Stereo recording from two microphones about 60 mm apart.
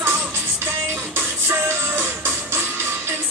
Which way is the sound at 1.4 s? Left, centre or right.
Right.